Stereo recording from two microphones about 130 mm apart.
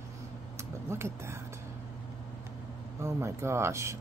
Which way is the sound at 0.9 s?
20° right (ahead or behind).